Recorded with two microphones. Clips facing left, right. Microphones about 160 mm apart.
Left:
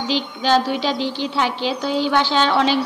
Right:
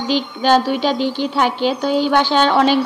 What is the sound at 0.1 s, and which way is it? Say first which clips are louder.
A woman's voice: right 4 dB; 50° right (ahead or behind).